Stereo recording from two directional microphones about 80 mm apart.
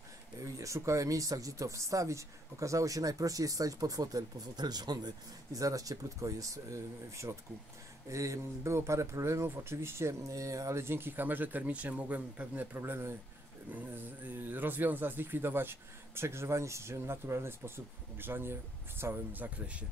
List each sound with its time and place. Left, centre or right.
0.4 s speech: right; by 12.6 s centre
12.7 s speech: right